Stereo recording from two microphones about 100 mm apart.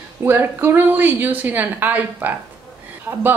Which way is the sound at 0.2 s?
20° right (ahead or behind).